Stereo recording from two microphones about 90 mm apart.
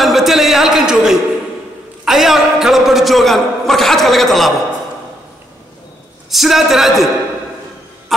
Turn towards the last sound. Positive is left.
turn(degrees=-5)  # may be behind; listen again after turning